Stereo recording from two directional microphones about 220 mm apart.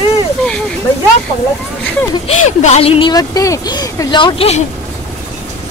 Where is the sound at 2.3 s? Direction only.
30° left (ahead or behind).